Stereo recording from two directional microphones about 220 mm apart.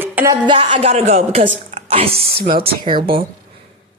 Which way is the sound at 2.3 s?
45° right (ahead or behind).